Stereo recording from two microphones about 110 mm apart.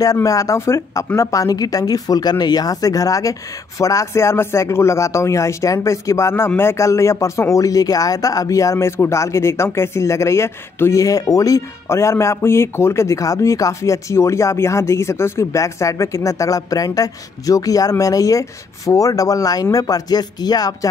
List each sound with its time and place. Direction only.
0.0 s speech: 35° left (ahead or behind)